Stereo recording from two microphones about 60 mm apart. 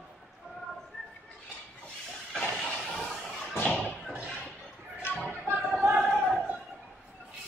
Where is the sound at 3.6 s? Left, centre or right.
Centre.